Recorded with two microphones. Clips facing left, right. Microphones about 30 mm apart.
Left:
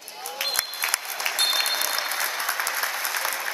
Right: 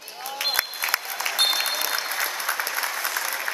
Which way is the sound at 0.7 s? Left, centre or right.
Centre.